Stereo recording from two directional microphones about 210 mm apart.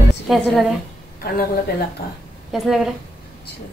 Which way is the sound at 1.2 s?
45° left (ahead or behind).